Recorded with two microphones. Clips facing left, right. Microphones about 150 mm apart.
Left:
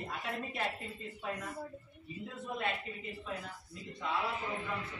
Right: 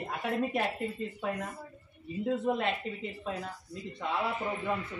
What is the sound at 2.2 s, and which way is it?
Speech, 85° right.